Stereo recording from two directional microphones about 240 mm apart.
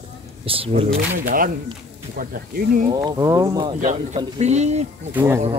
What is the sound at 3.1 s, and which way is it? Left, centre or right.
Speech, centre.